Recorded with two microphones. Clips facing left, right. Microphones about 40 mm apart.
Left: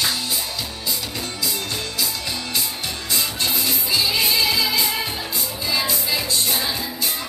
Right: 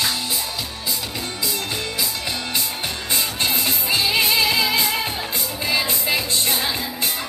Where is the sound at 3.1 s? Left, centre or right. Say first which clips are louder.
Right 1 dB; right.